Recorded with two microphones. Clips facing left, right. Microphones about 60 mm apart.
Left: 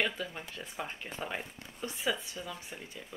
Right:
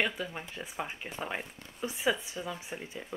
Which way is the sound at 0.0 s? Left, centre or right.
Centre.